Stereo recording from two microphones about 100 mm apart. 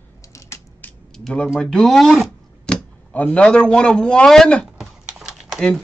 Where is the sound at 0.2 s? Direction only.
30° left (ahead or behind).